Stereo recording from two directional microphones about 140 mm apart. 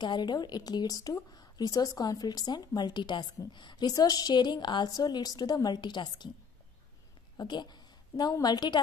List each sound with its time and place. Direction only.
0.0 s speech: 30° left (ahead or behind)
7.3 s a woman's voice: 30° left (ahead or behind)